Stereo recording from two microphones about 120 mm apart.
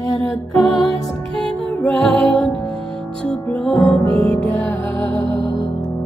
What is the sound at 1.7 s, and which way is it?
Music, 10° left (ahead or behind).